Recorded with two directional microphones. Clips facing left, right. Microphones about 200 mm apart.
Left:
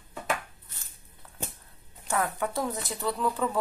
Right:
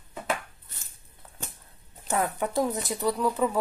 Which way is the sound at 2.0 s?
20° right (ahead or behind).